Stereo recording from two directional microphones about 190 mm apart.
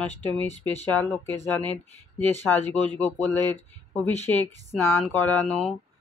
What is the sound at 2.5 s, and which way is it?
Speech, 10° left (ahead or behind).